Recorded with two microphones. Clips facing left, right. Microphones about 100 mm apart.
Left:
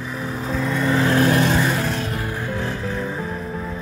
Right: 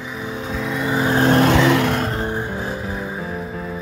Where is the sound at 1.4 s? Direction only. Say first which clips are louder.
Right 5 dB; 85° right.